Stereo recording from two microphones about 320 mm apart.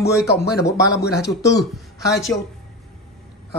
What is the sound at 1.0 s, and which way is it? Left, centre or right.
Speech, left.